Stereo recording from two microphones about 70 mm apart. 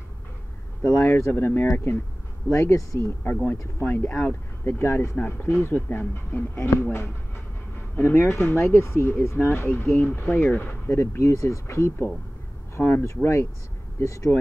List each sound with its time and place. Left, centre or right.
0.9 s speech: left
2.5 s speech: left
3.8 s speech: left